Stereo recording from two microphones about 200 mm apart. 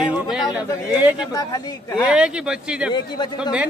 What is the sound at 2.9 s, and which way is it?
Speech, 20° left (ahead or behind).